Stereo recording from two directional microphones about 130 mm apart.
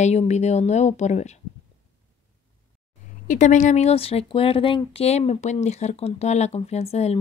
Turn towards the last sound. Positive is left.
turn(degrees=55)  # may be behind; listen again after turning